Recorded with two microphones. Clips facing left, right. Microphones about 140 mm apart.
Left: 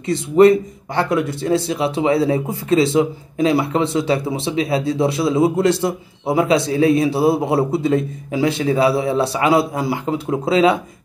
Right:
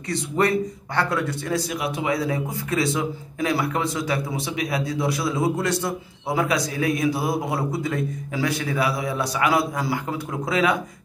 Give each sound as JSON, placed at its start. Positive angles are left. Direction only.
{"t": 0.1, "sound": "a man's voice", "side_deg": 20}